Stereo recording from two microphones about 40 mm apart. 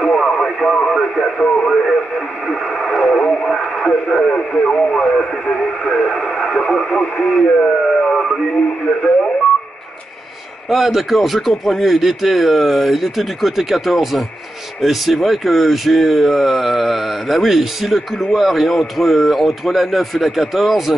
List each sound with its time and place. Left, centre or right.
0.0 s radio: centre
7.0 s speech: left
7.3 s speech: centre
7.9 s a sound: centre
8.5 s speech: centre
10.7 s speech: centre